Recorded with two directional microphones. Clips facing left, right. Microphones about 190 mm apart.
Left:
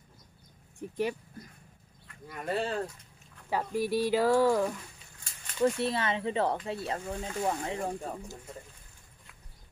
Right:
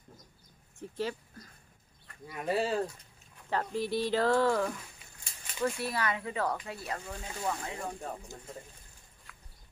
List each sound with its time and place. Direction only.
0.7 s speech: 15° left (ahead or behind)
2.2 s speech: 5° right (ahead or behind)
3.4 s speech: 10° left (ahead or behind)
5.6 s speech: 25° left (ahead or behind)